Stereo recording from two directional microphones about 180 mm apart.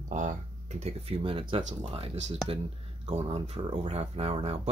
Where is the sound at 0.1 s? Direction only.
45° right (ahead or behind).